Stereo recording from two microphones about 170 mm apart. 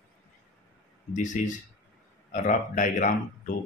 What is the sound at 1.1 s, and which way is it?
Speech, 45° left (ahead or behind).